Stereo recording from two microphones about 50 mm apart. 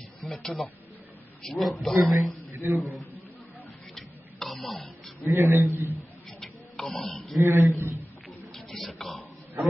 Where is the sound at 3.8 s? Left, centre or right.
Centre.